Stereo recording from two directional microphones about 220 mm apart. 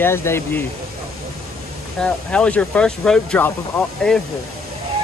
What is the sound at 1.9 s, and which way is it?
Speech, 5° left (ahead or behind).